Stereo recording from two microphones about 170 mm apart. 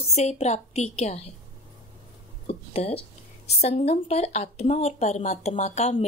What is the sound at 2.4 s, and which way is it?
A woman's voice, 35° left (ahead or behind).